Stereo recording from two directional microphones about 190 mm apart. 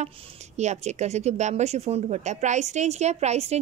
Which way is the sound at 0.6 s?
35° right (ahead or behind).